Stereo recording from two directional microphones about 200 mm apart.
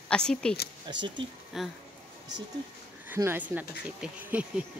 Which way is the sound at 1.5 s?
Centre (ahead or behind).